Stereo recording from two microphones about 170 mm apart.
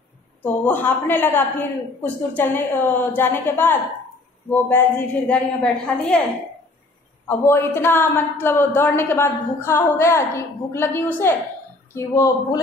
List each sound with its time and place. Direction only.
0.4 s a woman's voice: 10° left (ahead or behind)
7.2 s a woman's voice: 15° left (ahead or behind)